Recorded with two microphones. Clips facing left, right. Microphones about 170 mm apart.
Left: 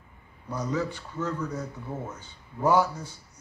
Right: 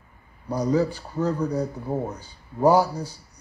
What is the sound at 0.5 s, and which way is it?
Speech, 35° right (ahead or behind).